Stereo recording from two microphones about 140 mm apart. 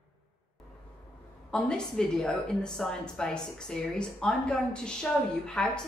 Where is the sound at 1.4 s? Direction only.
5° left (ahead or behind).